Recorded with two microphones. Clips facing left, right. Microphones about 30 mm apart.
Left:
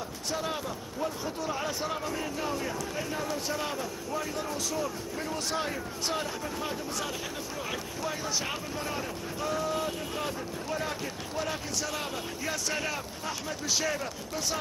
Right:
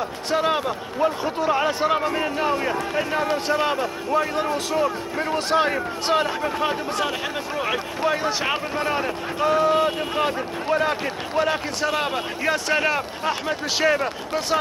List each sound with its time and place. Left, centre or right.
0.3 s speech: right